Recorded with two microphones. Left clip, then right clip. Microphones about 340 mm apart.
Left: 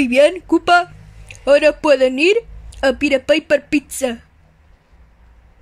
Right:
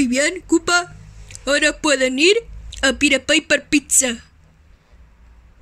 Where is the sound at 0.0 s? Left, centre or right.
Centre.